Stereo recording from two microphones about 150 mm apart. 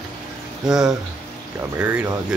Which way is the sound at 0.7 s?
5° right (ahead or behind).